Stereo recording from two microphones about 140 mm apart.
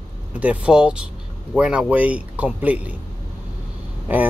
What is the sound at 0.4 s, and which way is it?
Speech, 10° right (ahead or behind).